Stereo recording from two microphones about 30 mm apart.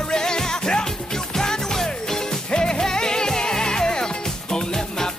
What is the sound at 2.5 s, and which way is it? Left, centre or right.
Music, left.